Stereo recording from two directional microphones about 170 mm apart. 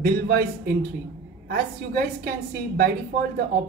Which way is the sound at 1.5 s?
65° right (ahead or behind).